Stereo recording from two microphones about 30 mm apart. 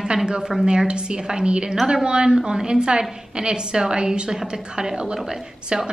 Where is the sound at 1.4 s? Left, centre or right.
Right.